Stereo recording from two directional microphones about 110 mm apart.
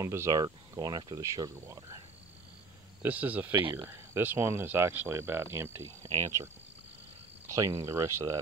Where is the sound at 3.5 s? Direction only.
50° right (ahead or behind).